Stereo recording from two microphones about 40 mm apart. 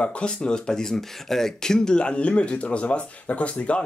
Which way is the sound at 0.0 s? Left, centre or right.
Left.